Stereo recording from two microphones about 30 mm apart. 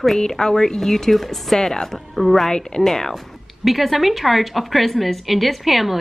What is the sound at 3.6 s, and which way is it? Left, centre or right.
A woman's voice, centre.